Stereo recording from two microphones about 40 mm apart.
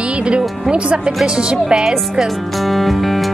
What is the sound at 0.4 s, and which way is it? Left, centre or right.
Speech, right.